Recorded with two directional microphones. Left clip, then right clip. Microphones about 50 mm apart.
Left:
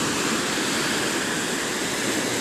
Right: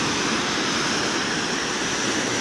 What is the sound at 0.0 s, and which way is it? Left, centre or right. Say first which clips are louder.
Vehicle: right 1 dB; right.